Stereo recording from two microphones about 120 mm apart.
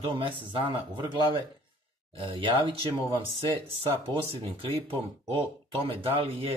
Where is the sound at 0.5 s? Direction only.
45° right (ahead or behind).